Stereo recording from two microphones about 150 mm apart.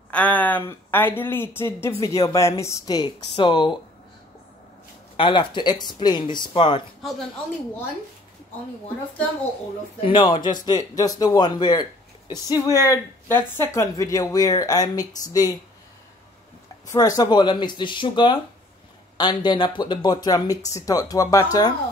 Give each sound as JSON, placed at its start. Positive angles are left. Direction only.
{"t": 0.1, "sound": "a woman's voice", "side_deg": 10}
{"t": 5.1, "sound": "speech", "side_deg": 35}
{"t": 9.9, "sound": "a man's voice", "side_deg": 35}
{"t": 16.9, "sound": "a man's voice", "side_deg": 25}